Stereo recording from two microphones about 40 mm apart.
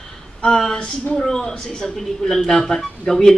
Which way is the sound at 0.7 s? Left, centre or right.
Left.